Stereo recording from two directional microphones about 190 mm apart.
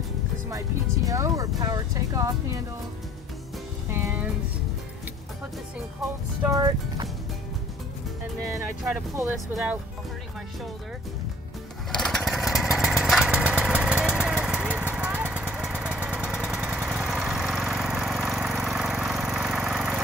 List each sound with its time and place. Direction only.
1.0 s speech: 15° right (ahead or behind)
3.9 s speech: 10° right (ahead or behind)
6.5 s speech: 20° right (ahead or behind)
11.9 s lawn mower: centre (ahead or behind)
12.7 s vehicle: 5° right (ahead or behind)